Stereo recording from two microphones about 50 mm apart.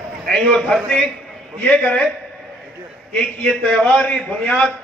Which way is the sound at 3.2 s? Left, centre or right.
Left.